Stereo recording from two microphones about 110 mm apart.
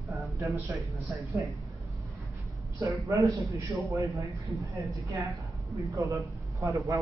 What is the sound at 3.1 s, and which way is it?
Speech, 30° right (ahead or behind).